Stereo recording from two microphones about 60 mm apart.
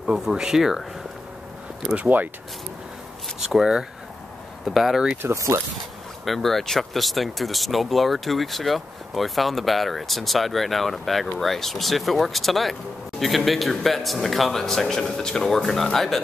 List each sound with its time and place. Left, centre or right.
0.0 s speech: centre
2.0 s speech: right
3.3 s speech: centre
5.2 s speech: right
6.2 s speech: centre